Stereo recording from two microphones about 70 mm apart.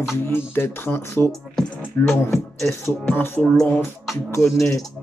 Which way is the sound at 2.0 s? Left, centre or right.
Left.